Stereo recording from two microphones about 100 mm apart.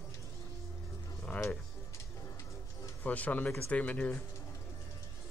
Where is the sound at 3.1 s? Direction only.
15° left (ahead or behind).